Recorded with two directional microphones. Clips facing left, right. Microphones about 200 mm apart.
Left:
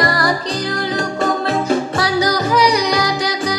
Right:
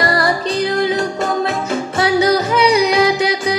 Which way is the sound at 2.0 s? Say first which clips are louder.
Right 3 dB; 25° right (ahead or behind).